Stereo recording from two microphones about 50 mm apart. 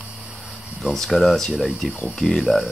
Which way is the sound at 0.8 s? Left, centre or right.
Centre.